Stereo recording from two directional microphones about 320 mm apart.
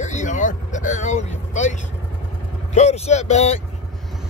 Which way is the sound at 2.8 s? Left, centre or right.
Left.